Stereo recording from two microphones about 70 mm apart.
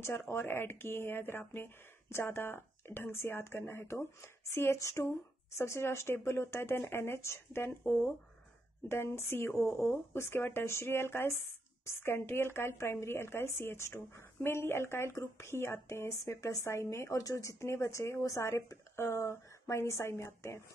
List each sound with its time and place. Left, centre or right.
0.0 s speech: left